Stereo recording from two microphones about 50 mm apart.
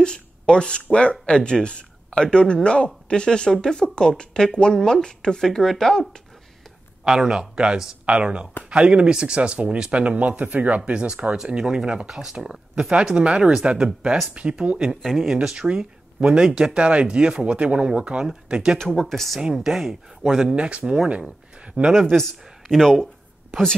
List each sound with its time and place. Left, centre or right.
0.0 s speech: centre
7.1 s speech: centre
15.0 s speech: centre
15.4 s speech: centre
18.8 s speech: centre
19.4 s speech: centre
20.5 s speech: right
22.0 s speech: centre